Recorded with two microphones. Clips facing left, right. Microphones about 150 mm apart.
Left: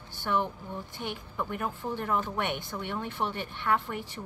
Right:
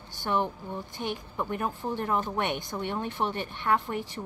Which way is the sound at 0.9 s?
20° right (ahead or behind).